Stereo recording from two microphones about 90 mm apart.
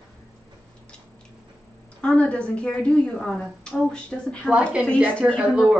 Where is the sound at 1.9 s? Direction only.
10° left (ahead or behind).